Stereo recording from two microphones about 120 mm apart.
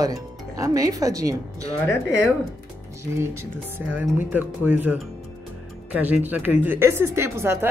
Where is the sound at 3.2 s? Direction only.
20° right (ahead or behind).